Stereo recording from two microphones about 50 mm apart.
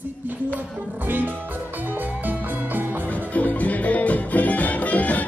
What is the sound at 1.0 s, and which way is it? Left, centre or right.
Music, right.